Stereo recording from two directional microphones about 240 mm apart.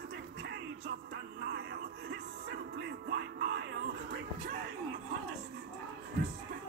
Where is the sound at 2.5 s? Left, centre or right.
Right.